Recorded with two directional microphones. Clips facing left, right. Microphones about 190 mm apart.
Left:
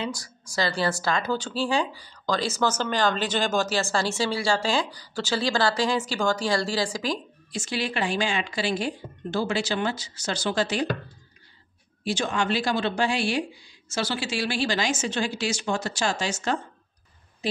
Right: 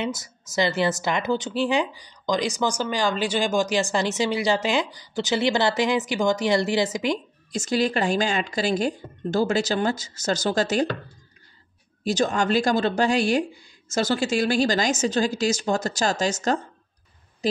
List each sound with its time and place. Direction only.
0.0 s speech: 20° right (ahead or behind)
7.5 s speech: 45° right (ahead or behind)
12.0 s a woman's voice: 40° right (ahead or behind)